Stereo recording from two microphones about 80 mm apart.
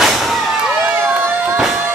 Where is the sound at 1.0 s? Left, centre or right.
Right.